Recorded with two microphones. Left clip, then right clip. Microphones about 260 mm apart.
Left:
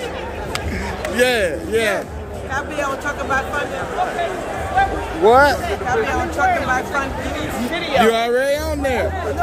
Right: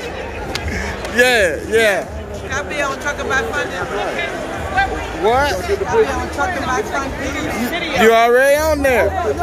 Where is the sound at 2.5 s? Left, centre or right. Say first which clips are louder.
Right 2 dB; left.